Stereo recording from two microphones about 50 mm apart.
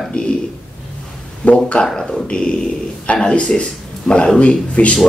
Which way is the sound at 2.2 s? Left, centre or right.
Centre.